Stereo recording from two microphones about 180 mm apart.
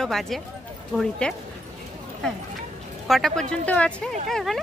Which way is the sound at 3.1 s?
Centre (ahead or behind).